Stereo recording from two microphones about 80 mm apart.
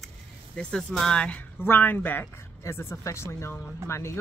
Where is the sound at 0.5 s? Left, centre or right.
Centre.